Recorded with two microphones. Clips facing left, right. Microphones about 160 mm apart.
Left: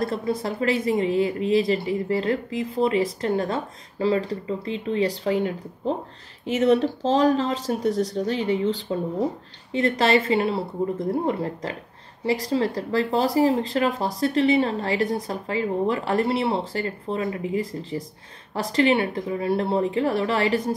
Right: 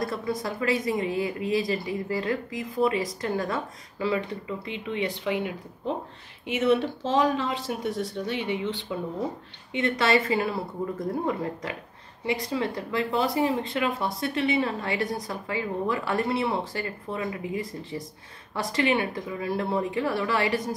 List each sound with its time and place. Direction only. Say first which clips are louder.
0.0 s speech: left 4 dB; 30° left (ahead or behind)
12.3 s speech: left 5 dB; 35° left (ahead or behind)